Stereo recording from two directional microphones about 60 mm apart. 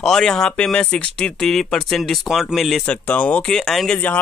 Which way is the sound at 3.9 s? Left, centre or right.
Left.